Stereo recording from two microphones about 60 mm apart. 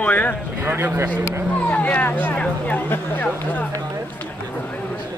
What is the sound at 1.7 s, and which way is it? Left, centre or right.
Speech, left.